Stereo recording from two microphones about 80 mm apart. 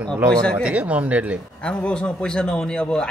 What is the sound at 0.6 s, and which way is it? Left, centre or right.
Speech, centre.